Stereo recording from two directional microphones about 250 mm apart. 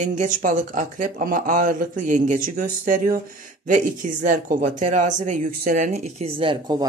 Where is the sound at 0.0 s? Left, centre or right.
Right.